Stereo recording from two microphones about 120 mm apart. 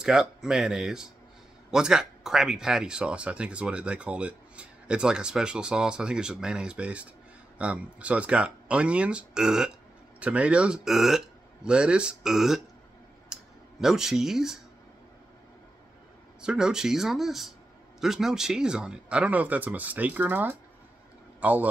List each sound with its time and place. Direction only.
0.0 s speech: 5° right (ahead or behind)
16.3 s speech: 5° right (ahead or behind)